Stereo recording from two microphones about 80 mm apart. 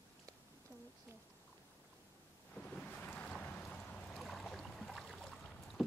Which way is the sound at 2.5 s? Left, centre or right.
Centre.